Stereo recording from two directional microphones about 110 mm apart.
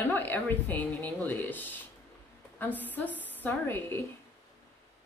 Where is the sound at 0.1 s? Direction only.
15° left (ahead or behind).